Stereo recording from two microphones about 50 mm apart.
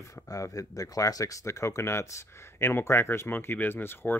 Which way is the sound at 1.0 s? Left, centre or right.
Left.